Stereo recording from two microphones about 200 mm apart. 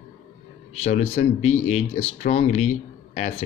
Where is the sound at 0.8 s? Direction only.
35° left (ahead or behind).